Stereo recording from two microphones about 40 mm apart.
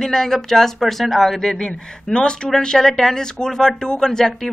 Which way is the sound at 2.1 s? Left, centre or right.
Left.